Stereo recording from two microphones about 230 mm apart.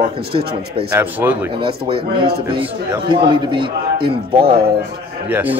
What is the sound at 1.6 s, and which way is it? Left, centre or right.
A man's voice, right.